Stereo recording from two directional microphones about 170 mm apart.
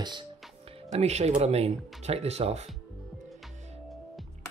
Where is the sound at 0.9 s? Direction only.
40° right (ahead or behind).